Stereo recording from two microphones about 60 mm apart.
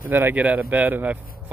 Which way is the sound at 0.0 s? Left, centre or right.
Right.